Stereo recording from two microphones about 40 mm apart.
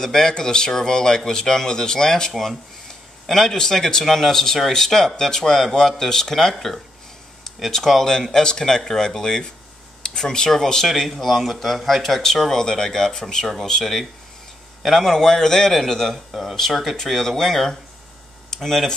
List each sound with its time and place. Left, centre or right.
0.0 s speech: centre
11.0 s speech: centre
14.8 s a man's voice: centre
15.0 s speech: centre